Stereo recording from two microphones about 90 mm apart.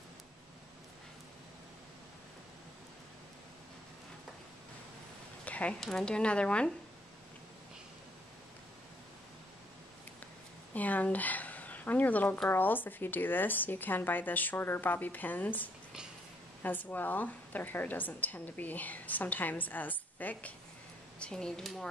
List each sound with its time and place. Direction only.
5.4 s a sound: 15° left (ahead or behind)
5.8 s speech: 5° left (ahead or behind)
10.7 s a woman's voice: 20° left (ahead or behind)